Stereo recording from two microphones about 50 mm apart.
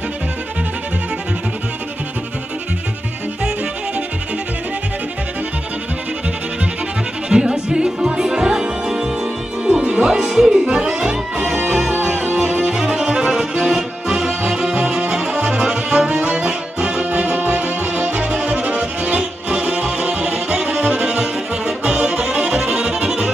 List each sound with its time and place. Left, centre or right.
7.2 s music: centre
12.4 s accordion: centre
17.1 s music: right